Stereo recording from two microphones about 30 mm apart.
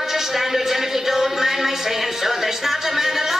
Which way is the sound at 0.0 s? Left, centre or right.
Centre.